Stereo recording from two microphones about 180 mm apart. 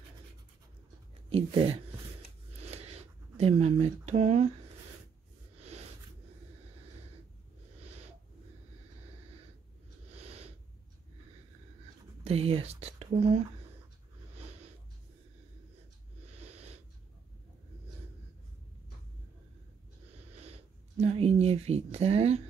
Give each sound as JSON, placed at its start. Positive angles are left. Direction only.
{"t": 1.3, "sound": "speech", "side_deg": -30}
{"t": 2.6, "sound": "a sound", "side_deg": -35}
{"t": 10.1, "sound": "snort", "side_deg": -35}
{"t": 12.3, "sound": "speech", "side_deg": -30}
{"t": 16.3, "sound": "wheeze", "side_deg": -35}
{"t": 20.3, "sound": "a sound", "side_deg": -35}